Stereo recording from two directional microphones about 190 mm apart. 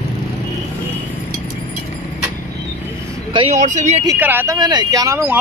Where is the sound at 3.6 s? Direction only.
40° right (ahead or behind).